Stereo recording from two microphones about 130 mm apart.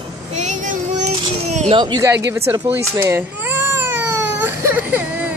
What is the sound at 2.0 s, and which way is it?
Cat, 20° right (ahead or behind).